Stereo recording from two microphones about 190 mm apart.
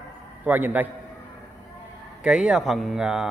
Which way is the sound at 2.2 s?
5° right (ahead or behind).